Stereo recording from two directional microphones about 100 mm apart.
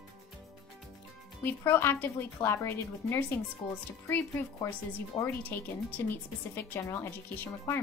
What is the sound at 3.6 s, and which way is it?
Speech, 55° left (ahead or behind).